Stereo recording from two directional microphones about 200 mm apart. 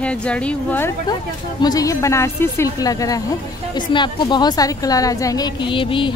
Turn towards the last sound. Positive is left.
turn(degrees=25)  # may be behind; listen again after turning